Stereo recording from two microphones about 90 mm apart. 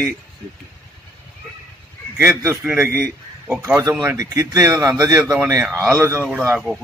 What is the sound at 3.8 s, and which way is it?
Speech, 40° right (ahead or behind).